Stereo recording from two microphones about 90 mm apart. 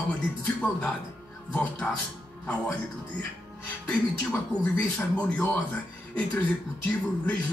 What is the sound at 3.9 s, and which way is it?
Speech, 15° left (ahead or behind).